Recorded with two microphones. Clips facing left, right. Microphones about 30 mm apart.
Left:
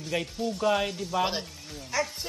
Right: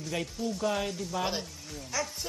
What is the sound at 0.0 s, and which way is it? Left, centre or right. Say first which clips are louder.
Speech: left 3 dB; left.